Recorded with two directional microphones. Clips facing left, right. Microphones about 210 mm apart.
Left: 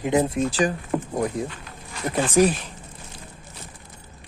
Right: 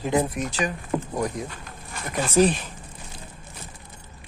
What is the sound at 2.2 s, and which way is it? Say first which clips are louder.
Speech: even; 15° left (ahead or behind).